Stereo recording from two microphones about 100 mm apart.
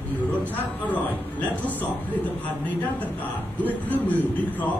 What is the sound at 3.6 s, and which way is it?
Speech, 15° left (ahead or behind).